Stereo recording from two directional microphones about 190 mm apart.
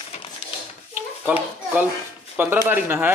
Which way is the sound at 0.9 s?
10° right (ahead or behind).